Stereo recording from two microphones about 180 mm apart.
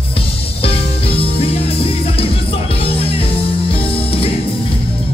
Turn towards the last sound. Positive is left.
turn(degrees=30)  # may be behind; listen again after turning